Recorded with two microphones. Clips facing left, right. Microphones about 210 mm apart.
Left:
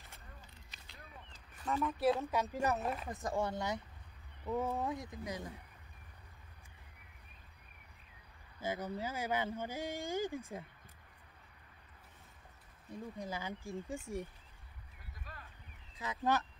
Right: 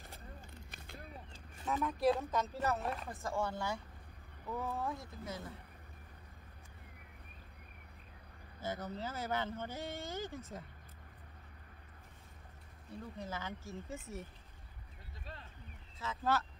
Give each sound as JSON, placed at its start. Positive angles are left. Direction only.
{"t": 0.6, "sound": "a sound", "side_deg": -50}
{"t": 0.9, "sound": "a sound", "side_deg": -30}
{"t": 1.7, "sound": "speech", "side_deg": 0}
{"t": 3.1, "sound": "speech", "side_deg": 20}
{"t": 8.5, "sound": "speech", "side_deg": 10}
{"t": 12.9, "sound": "speech", "side_deg": 15}
{"t": 16.0, "sound": "speech", "side_deg": 15}